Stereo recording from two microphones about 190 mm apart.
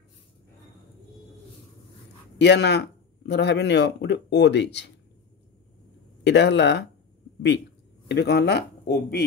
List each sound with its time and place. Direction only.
2.3 s speech: 65° left (ahead or behind)
6.2 s speech: 65° left (ahead or behind)
8.1 s speech: 60° left (ahead or behind)